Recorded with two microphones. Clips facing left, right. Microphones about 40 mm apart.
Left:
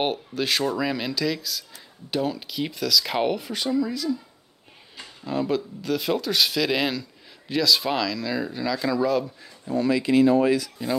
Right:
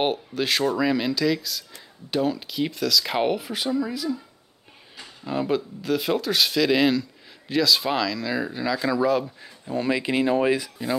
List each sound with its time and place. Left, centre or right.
0.0 s speech: centre
5.2 s speech: centre
9.4 s speech: right